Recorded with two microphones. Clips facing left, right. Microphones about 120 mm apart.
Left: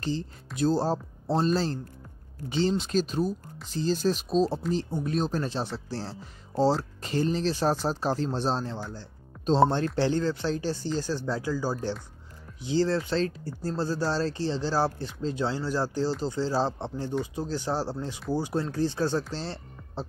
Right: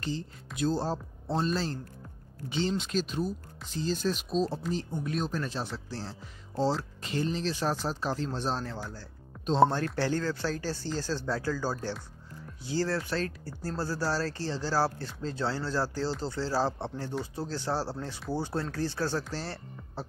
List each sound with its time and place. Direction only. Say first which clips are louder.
0.6 s speech: left 4 dB; 35° left (ahead or behind)
2.8 s speech: left 4 dB; 40° left (ahead or behind); by 8.8 s 25° left (ahead or behind)
9.9 s speech: left 4 dB; 20° left (ahead or behind)